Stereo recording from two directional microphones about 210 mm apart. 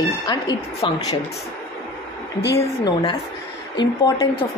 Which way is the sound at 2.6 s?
20° left (ahead or behind).